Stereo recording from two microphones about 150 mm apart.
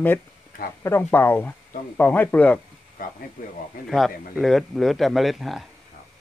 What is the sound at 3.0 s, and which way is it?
Speech, 70° left (ahead or behind).